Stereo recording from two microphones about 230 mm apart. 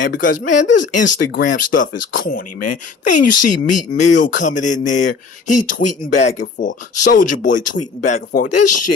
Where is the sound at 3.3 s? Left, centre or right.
Left.